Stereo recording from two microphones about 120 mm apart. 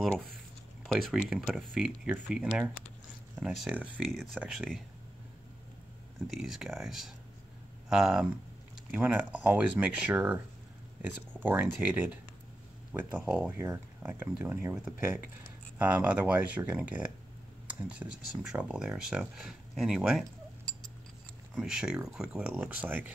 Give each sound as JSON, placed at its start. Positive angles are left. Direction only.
{"t": 0.9, "sound": "speech", "side_deg": -5}
{"t": 4.4, "sound": "speech", "side_deg": 0}
{"t": 6.3, "sound": "speech", "side_deg": -5}
{"t": 20.7, "sound": "a sound", "side_deg": 10}
{"t": 21.5, "sound": "speech", "side_deg": -5}